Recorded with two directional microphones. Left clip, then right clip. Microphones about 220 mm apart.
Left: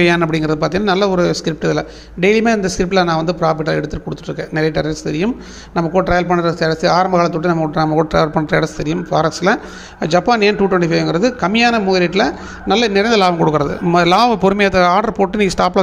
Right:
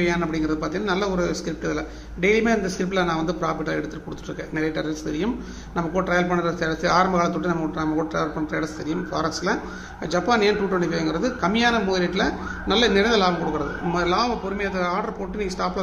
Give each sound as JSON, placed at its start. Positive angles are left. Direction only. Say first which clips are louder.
{"t": 0.0, "sound": "speech", "louder": "left 9 dB", "side_deg": 40}